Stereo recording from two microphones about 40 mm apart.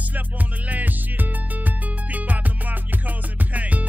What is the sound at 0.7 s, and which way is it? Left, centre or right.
Music, right.